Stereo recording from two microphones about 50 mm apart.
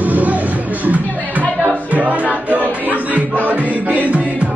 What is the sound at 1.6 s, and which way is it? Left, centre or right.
Music, right.